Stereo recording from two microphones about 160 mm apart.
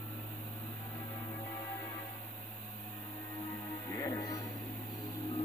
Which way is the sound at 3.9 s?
20° left (ahead or behind).